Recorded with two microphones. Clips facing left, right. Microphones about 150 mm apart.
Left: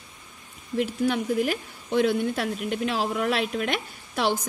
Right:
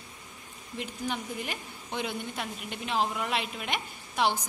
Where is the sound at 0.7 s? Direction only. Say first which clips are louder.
Left 10 dB; 85° left.